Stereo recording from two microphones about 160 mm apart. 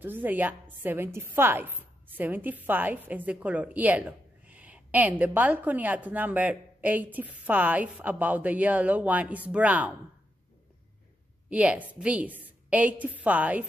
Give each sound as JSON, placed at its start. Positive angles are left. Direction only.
{"t": 0.0, "sound": "speech", "side_deg": -10}
{"t": 11.4, "sound": "speech", "side_deg": -5}